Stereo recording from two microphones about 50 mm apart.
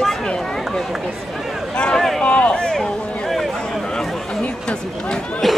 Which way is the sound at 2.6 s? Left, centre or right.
Centre.